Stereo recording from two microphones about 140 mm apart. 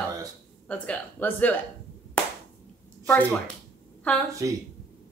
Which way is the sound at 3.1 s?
10° left (ahead or behind).